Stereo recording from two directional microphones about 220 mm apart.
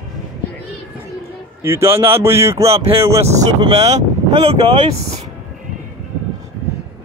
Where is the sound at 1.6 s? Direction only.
10° right (ahead or behind).